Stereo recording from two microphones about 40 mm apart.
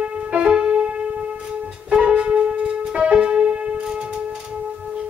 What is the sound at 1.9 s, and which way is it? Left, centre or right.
Music, right.